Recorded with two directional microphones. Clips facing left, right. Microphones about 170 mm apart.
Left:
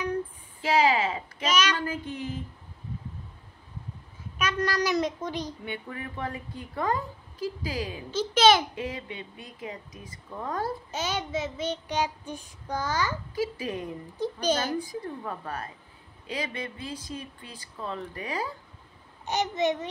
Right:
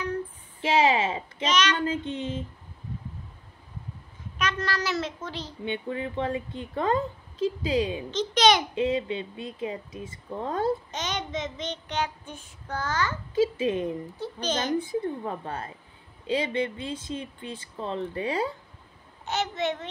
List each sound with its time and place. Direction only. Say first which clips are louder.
0.6 s a sound: right 1 dB; 25° right (ahead or behind)
1.5 s child singing: right 1 dB; 10° left (ahead or behind)
1.8 s a woman's voice: right 4 dB; 25° right (ahead or behind)
4.4 s child singing: left 2 dB; 10° left (ahead or behind)
5.7 s a woman's voice: right 6 dB; 25° right (ahead or behind)
8.1 s a child's voice: left 2 dB; 5° left (ahead or behind)
8.7 s a woman's voice: right 9 dB; 25° right (ahead or behind)
10.9 s child singing: left 1 dB; 10° left (ahead or behind)
13.3 s a woman's voice: right 6 dB; 25° right (ahead or behind)
14.2 s child singing: left 3 dB; 10° left (ahead or behind)
14.8 s a woman's voice: right 5 dB; 25° right (ahead or behind)
19.2 s child singing: left 2 dB; 15° left (ahead or behind)